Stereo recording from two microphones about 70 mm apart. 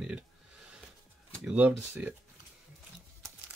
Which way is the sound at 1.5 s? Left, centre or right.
Right.